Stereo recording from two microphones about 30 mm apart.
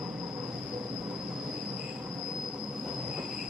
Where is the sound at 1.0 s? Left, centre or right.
Right.